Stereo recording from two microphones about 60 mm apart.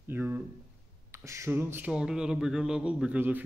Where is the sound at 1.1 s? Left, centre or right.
Right.